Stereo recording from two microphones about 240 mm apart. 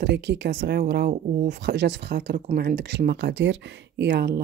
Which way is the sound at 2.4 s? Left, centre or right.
Right.